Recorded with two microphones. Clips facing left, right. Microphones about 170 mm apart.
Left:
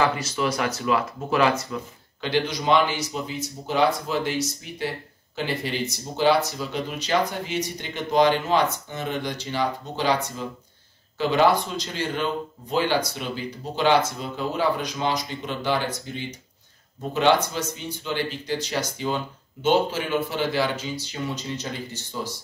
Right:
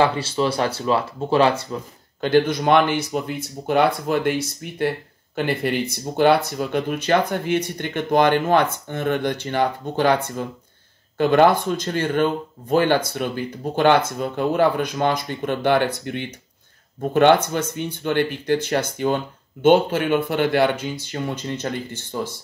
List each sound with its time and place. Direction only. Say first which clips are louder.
0.0 s speech: right 4 dB; 30° right (ahead or behind)
2.2 s speech: right 6 dB; 50° right (ahead or behind)